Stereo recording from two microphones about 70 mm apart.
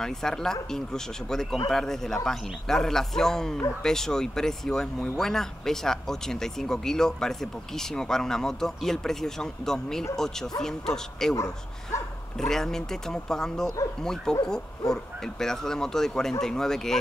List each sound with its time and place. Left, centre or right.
0.0 s speech: centre
11.3 s speech: left
12.4 s speech: centre